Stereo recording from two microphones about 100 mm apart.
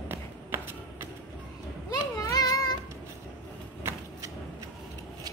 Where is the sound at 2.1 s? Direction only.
40° left (ahead or behind).